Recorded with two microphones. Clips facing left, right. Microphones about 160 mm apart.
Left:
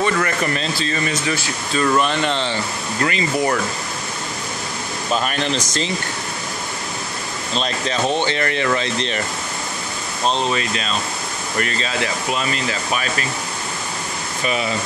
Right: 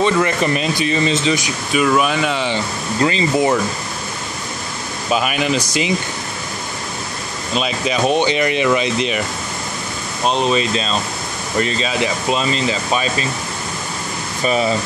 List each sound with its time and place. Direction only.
0.0 s speech: 20° right (ahead or behind)
5.1 s speech: 10° right (ahead or behind)
7.5 s speech: 10° right (ahead or behind)
10.2 s speech: 15° right (ahead or behind)
14.4 s speech: 35° right (ahead or behind)